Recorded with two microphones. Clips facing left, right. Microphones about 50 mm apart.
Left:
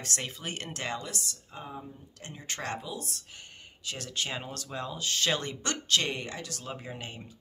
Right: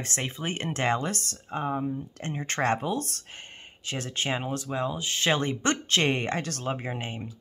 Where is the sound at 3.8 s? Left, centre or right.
Right.